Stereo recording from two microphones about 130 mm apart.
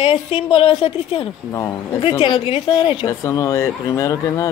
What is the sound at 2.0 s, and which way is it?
A woman's voice, 40° left (ahead or behind).